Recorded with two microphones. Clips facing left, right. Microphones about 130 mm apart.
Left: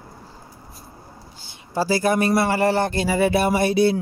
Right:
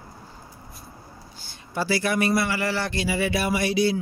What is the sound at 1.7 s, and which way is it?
Speech, 40° left (ahead or behind).